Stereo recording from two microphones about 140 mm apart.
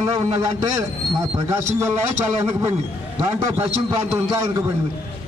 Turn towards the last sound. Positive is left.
turn(degrees=-20)  # may be behind; listen again after turning